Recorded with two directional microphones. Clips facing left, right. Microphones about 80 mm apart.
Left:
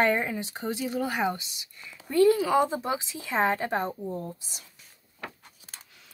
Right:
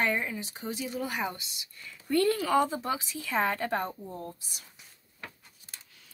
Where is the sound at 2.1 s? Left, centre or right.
Centre.